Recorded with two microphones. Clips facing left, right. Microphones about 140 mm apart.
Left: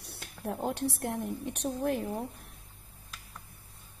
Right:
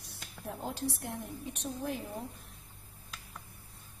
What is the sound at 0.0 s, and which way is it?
A woman's voice, 60° left (ahead or behind).